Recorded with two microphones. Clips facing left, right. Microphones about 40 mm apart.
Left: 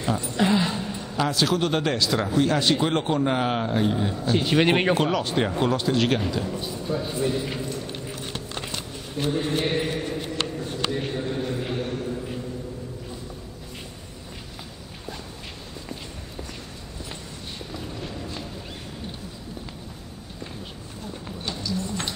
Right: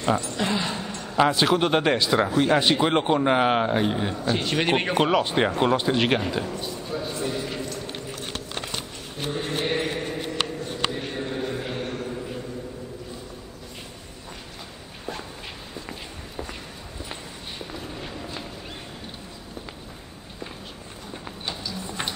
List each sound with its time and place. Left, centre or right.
0.2 s speech: centre
1.1 s a man's voice: right
4.2 s speech: centre
4.9 s a man's voice: right
6.6 s a man's voice: centre
9.2 s a man's voice: centre
10.6 s a sound: centre
17.1 s walk: centre
21.1 s a sound: centre